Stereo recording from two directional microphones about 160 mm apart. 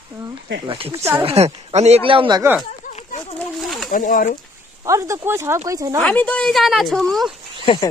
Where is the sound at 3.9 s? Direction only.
60° left (ahead or behind).